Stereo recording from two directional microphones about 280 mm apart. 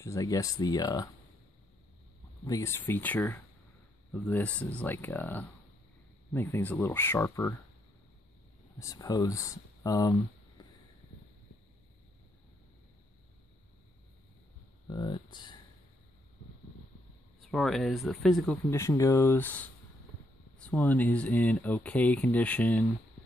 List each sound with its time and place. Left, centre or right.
0.0 s speech: centre
2.4 s speech: centre
8.7 s speech: centre
10.6 s a sound: centre
14.9 s speech: centre
17.4 s speech: centre